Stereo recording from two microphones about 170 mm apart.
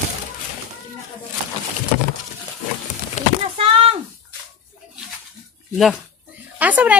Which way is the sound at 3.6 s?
35° right (ahead or behind).